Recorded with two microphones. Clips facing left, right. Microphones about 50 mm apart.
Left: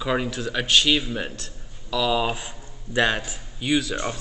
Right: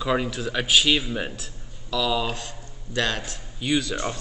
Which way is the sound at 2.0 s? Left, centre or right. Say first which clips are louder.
Left 2 dB; centre.